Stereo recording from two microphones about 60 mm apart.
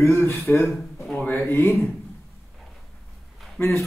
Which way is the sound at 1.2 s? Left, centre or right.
Left.